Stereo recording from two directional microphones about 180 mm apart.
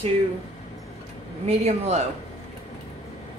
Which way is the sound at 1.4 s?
35° right (ahead or behind).